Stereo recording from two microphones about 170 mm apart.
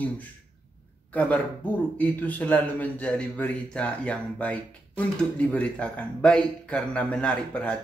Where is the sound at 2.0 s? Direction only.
10° left (ahead or behind).